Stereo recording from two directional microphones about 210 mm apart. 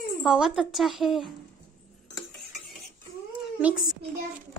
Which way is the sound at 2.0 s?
Centre (ahead or behind).